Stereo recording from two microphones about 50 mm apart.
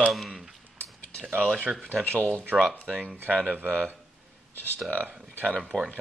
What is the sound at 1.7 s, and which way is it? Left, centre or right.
Speech, right.